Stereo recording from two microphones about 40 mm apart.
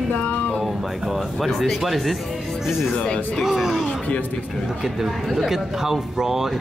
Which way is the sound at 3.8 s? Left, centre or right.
Left.